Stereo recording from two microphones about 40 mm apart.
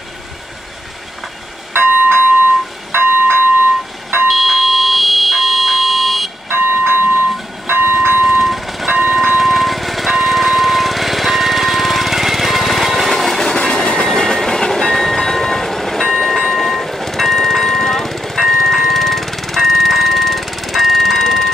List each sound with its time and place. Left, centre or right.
1.7 s music: right
2.9 s a sound: right
4.3 s fire alarm: centre
6.5 s train: right
7.6 s bell: right
8.4 s train: centre
9.0 s music: centre
13.1 s train: centre
13.4 s train: centre